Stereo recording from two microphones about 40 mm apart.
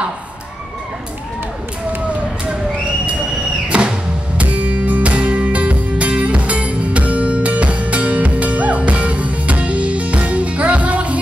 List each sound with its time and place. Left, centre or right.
3.6 s music: right
4.4 s music: right